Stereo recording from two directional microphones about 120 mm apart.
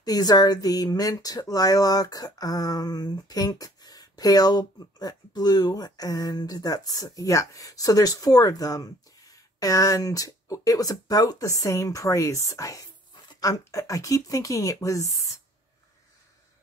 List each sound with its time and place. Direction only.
0.0 s speech: 35° left (ahead or behind)